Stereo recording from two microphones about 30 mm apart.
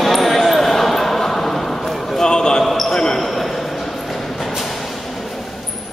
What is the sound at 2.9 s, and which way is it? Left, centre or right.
Basketball bounce, left.